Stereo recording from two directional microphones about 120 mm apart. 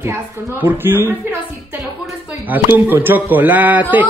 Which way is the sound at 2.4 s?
15° right (ahead or behind).